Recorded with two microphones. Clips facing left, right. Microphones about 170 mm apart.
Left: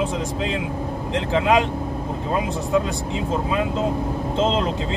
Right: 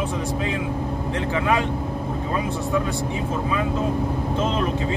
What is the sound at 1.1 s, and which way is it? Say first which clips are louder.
Speech: left 4 dB; 20° left (ahead or behind).